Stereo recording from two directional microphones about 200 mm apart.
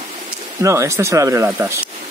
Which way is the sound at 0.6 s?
15° right (ahead or behind).